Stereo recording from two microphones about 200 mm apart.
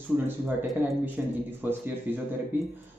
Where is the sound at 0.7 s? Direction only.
10° right (ahead or behind).